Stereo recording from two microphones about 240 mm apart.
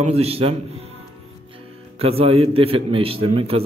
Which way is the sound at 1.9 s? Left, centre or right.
Right.